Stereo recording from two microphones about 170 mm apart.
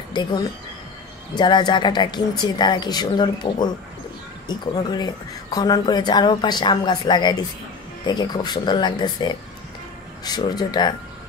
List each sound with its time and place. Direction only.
0.1 s a woman's voice: 25° left (ahead or behind)